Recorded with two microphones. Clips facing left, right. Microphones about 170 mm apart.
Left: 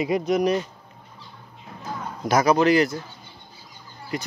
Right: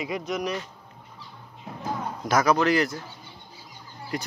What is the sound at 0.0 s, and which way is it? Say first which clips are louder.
Speech: left 8 dB; 35° left (ahead or behind).